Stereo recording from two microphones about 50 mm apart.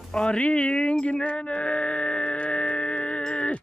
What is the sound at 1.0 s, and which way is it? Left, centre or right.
Music, left.